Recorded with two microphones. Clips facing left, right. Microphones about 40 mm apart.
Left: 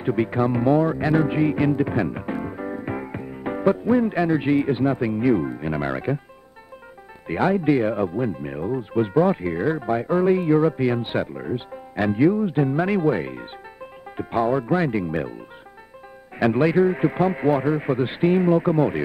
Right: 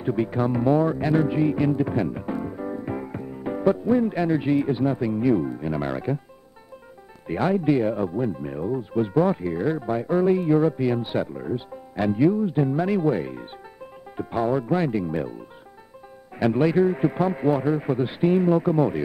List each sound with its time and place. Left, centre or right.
0.0 s speech: left
7.2 s speech: left
16.5 s speech: left